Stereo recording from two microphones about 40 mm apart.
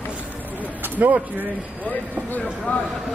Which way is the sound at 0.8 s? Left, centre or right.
Right.